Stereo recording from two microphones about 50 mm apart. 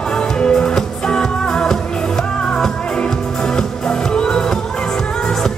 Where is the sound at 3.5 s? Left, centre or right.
Centre.